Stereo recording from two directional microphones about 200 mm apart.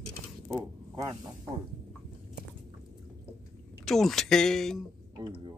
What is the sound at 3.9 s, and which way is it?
Speech, centre (ahead or behind).